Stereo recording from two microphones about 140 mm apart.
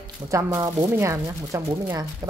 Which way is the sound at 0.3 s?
25° right (ahead or behind).